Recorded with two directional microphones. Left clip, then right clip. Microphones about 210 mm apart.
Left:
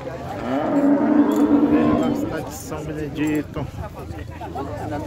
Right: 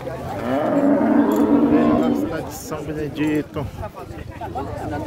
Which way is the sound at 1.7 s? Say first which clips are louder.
Right 1 dB; 10° right (ahead or behind).